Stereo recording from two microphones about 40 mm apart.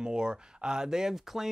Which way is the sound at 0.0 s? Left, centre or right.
Right.